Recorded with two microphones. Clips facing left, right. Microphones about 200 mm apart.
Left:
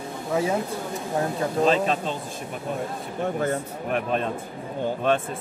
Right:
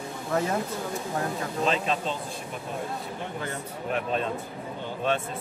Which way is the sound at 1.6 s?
40° left (ahead or behind).